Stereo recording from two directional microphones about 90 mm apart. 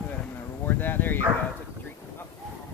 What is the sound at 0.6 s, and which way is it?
Speech, 20° left (ahead or behind).